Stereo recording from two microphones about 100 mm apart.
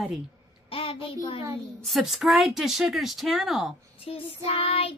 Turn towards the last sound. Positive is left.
turn(degrees=75)  # may be behind; listen again after turning